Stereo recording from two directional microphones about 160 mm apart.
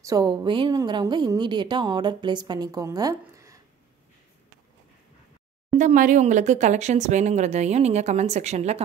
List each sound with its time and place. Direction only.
0.0 s a woman's voice: 25° right (ahead or behind)
5.7 s speech: 50° right (ahead or behind)